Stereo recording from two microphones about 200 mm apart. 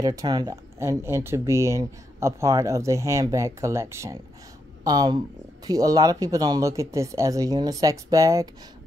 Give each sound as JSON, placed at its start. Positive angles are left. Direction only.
{"t": 0.0, "sound": "speech", "side_deg": -15}